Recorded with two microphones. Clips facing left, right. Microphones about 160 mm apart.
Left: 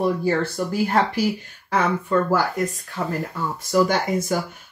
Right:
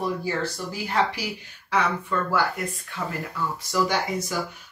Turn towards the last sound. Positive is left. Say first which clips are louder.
# left 4 dB
turn(degrees=50)  # may be behind; listen again after turning